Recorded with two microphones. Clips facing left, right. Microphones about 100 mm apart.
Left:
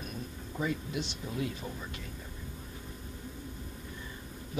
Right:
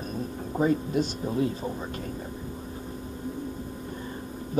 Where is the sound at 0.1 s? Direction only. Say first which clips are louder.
Right 10 dB; 40° right (ahead or behind).